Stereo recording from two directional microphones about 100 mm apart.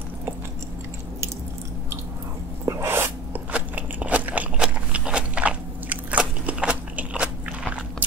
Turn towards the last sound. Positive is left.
turn(degrees=-15)  # may be behind; listen again after turning